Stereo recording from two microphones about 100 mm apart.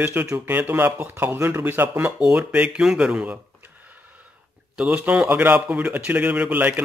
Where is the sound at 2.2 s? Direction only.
5° right (ahead or behind).